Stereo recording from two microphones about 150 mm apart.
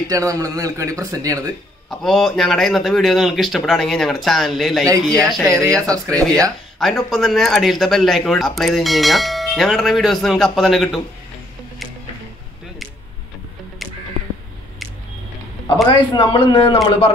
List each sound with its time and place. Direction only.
0.1 s speech: 20° right (ahead or behind)
1.9 s speech: centre (ahead or behind)
15.6 s a man's voice: 30° left (ahead or behind)